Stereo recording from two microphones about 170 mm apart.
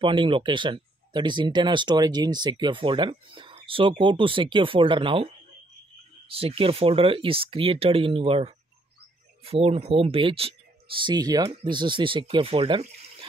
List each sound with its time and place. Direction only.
0.0 s speech: 30° right (ahead or behind)